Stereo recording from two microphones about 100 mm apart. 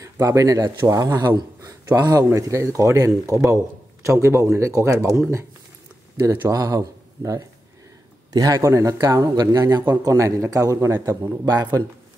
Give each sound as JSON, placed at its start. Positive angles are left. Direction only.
{"t": 0.0, "sound": "a man's voice", "side_deg": -30}
{"t": 6.5, "sound": "a man's voice", "side_deg": -35}
{"t": 11.2, "sound": "a man's voice", "side_deg": -45}